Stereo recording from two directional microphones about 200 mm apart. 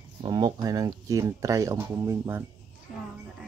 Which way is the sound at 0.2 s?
20° right (ahead or behind).